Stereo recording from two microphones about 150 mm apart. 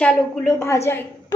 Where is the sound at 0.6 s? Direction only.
20° left (ahead or behind).